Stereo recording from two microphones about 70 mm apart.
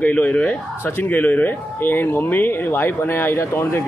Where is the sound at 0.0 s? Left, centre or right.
Left.